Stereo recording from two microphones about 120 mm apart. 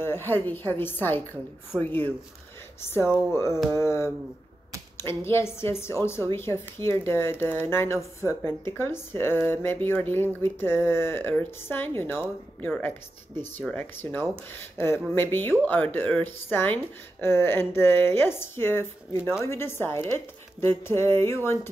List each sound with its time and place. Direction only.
0.0 s a woman's voice: 20° left (ahead or behind)